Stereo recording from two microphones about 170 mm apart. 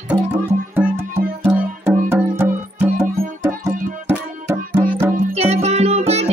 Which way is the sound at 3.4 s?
15° right (ahead or behind).